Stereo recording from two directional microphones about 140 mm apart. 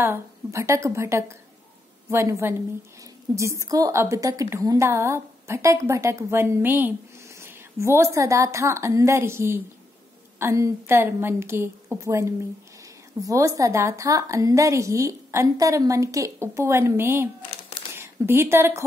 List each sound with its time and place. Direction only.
0.0 s a woman's voice: 20° right (ahead or behind)